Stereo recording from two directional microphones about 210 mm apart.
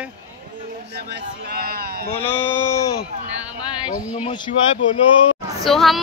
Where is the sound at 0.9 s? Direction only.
50° right (ahead or behind).